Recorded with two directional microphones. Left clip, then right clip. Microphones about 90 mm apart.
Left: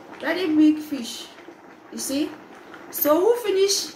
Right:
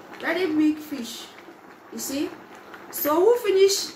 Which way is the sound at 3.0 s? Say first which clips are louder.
Even; 5° left (ahead or behind).